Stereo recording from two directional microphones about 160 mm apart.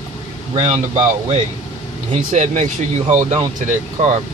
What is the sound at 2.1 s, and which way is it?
Speech, 45° right (ahead or behind).